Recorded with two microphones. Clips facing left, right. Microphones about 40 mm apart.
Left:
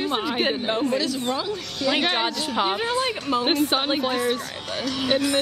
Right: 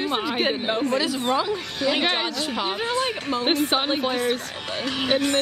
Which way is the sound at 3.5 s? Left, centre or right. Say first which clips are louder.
Right 2 dB; centre.